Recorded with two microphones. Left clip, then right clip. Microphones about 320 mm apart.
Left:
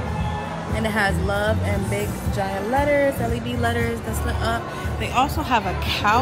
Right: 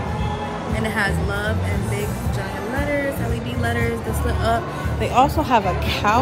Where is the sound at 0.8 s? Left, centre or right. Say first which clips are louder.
Left 1 dB; centre.